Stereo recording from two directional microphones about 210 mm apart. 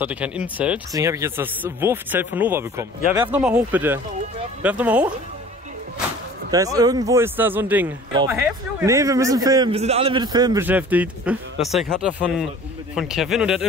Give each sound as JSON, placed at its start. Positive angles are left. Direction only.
{"t": 0.0, "sound": "a man's voice", "side_deg": -5}
{"t": 6.5, "sound": "a man's voice", "side_deg": -15}